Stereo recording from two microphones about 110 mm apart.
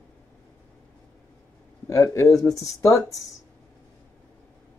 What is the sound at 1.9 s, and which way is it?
Speech, 30° left (ahead or behind).